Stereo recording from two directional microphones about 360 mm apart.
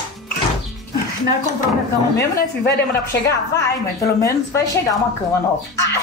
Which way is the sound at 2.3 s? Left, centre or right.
Left.